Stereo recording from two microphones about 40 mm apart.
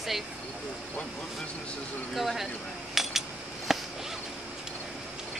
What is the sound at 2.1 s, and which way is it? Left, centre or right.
Speech, centre.